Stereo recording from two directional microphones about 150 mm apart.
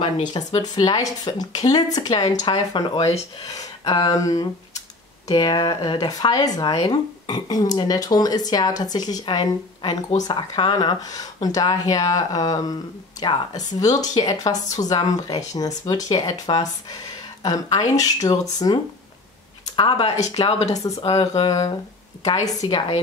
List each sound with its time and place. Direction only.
0.0 s speech: 30° left (ahead or behind)
20.4 s speech: 45° left (ahead or behind)
21.5 s speech: 25° left (ahead or behind)